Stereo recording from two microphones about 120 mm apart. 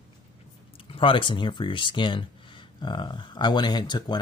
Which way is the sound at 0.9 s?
45° left (ahead or behind).